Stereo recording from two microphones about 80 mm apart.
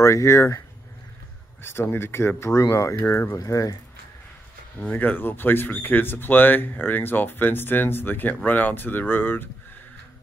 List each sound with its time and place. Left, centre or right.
0.0 s speech: left
1.6 s speech: left
4.7 s speech: left